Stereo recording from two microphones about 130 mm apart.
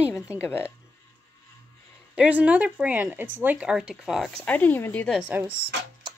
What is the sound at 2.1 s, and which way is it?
Speech, 10° right (ahead or behind).